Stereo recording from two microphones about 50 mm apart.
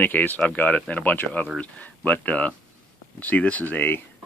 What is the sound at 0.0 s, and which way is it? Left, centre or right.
Speech, left.